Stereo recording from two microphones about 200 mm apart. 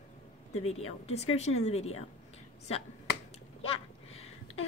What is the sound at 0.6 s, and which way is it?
Speech, 30° left (ahead or behind).